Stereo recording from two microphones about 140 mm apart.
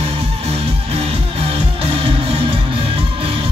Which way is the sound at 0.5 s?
45° right (ahead or behind).